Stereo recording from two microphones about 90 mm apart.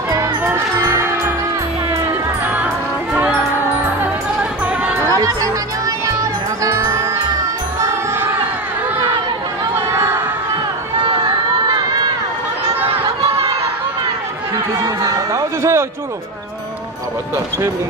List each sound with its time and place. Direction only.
0.5 s music: 30° right (ahead or behind)
4.0 s music: 10° right (ahead or behind)
5.1 s music: 40° right (ahead or behind)
6.6 s music: 40° right (ahead or behind)
9.8 s crowd: 30° right (ahead or behind)
14.8 s a sound: 35° right (ahead or behind)